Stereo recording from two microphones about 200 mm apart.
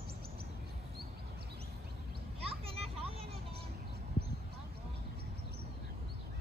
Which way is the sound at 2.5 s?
30° right (ahead or behind).